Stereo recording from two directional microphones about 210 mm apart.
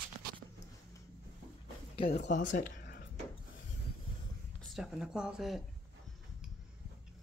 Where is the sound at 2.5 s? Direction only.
45° left (ahead or behind).